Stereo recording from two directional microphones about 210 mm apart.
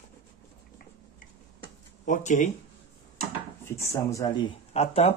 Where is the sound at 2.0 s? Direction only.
35° left (ahead or behind).